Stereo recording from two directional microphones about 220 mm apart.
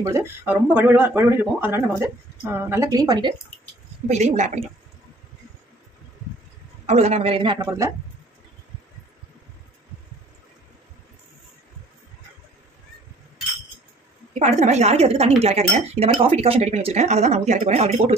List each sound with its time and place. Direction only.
0.0 s speech: 10° right (ahead or behind)
4.1 s a woman's voice: 30° right (ahead or behind)
6.9 s speech: 30° right (ahead or behind)
14.4 s speech: 30° right (ahead or behind)